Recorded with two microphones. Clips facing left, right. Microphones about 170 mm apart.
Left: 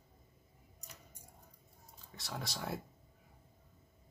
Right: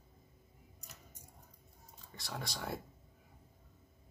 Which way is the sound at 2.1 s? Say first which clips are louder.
Even; centre (ahead or behind).